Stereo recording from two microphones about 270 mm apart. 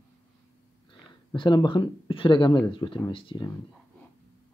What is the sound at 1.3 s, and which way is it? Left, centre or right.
Speech, centre.